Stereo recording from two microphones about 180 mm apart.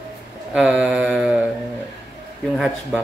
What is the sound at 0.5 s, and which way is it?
Mantra, 5° right (ahead or behind).